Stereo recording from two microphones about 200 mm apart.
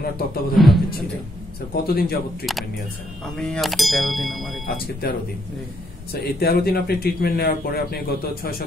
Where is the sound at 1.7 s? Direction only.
50° left (ahead or behind).